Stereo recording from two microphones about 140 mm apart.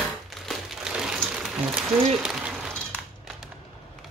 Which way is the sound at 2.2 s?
5° right (ahead or behind).